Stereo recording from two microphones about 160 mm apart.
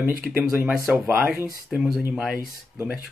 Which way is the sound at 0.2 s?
10° right (ahead or behind).